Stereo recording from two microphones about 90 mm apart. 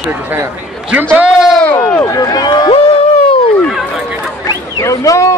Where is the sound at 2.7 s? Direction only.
90° left.